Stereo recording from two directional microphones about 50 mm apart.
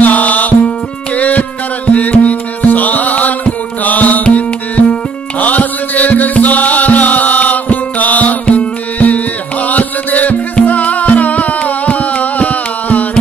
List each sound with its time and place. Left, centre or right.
0.0 s music: left